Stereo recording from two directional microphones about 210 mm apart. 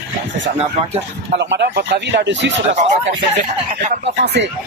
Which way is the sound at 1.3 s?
55° right (ahead or behind).